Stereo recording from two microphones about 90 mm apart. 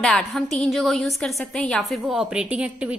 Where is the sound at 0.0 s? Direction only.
Centre (ahead or behind).